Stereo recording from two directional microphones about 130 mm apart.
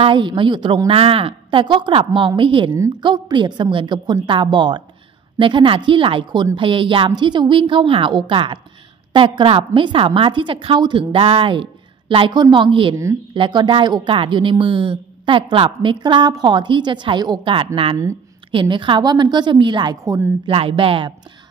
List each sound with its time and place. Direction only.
0.0 s speech: 40° right (ahead or behind)
12.9 s speech: 20° right (ahead or behind)
13.3 s speech: 40° right (ahead or behind)
20.1 s a woman's voice: 15° right (ahead or behind)
20.4 s speech: 45° right (ahead or behind)